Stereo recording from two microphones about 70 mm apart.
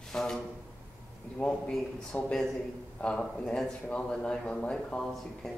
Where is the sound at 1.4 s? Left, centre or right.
Centre.